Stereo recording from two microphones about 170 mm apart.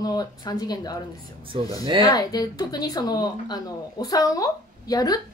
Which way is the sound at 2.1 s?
20° left (ahead or behind).